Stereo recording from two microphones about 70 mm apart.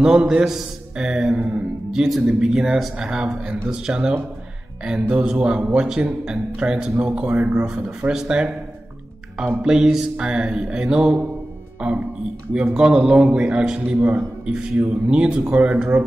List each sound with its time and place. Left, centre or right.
0.0 s a man's voice: centre
9.6 s a man's voice: centre
14.4 s a man's voice: centre